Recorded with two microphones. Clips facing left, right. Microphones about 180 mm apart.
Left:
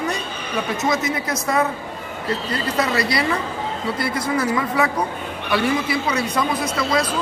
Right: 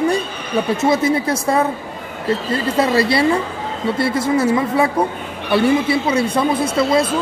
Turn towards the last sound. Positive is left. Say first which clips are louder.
# right 5 dB
turn(degrees=-30)  # may be behind; listen again after turning